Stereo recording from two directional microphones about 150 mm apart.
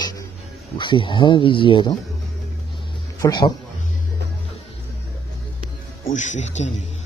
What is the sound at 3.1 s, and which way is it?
Speech, 25° left (ahead or behind).